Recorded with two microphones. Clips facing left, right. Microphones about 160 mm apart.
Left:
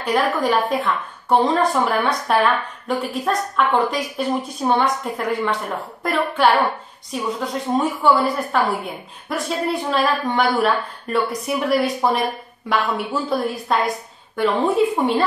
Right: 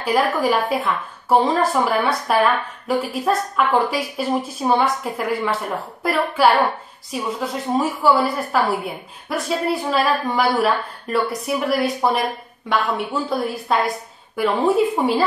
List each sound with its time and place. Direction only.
0.0 s a woman's voice: 5° right (ahead or behind)